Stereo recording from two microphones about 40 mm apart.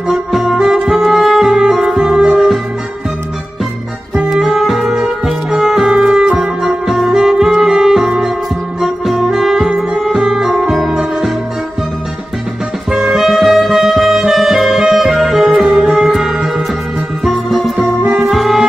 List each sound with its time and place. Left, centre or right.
0.1 s music: centre
1.5 s music: centre
4.3 s music: centre
4.6 s music: centre
13.1 s music: centre
15.4 s music: centre
15.7 s music: centre